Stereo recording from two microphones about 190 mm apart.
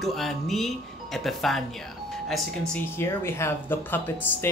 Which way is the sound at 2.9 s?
15° left (ahead or behind).